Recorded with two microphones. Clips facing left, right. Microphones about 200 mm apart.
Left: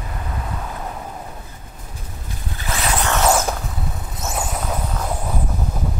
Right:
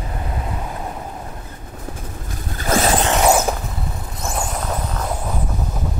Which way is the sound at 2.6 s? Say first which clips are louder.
Right 6 dB; 45° right (ahead or behind).